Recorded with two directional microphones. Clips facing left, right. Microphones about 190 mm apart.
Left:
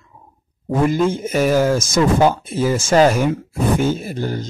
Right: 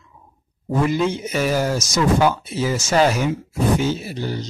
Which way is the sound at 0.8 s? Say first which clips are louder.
Left 4 dB; 50° left (ahead or behind).